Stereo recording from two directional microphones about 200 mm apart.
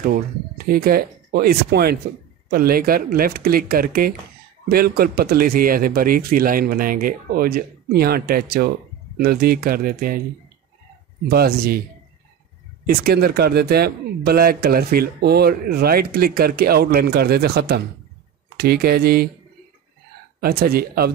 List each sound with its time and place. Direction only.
0.7 s speech: 50° right (ahead or behind)
11.2 s speech: 50° right (ahead or behind)
12.8 s speech: 50° right (ahead or behind)
20.3 s speech: 50° right (ahead or behind)